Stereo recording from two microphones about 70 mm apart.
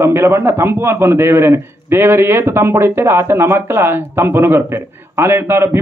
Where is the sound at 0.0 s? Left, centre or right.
Right.